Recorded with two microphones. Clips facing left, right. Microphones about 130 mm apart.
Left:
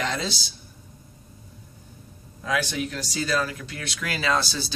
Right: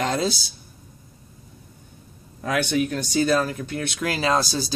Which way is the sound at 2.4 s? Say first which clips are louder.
Right 4 dB; 60° right (ahead or behind).